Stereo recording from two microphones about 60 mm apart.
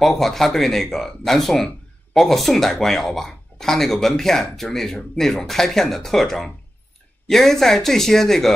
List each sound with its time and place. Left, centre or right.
0.0 s speech: centre